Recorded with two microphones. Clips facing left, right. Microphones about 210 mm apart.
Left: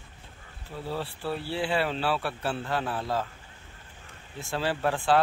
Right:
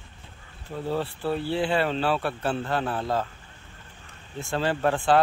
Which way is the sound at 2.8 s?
25° right (ahead or behind).